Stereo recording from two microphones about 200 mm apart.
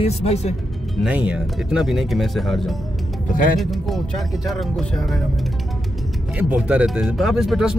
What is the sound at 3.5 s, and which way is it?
Speech, centre (ahead or behind).